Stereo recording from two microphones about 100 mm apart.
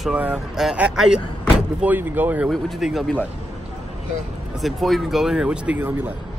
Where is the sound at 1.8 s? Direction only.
20° right (ahead or behind).